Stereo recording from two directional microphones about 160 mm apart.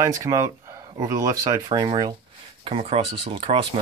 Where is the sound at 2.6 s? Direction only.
35° right (ahead or behind).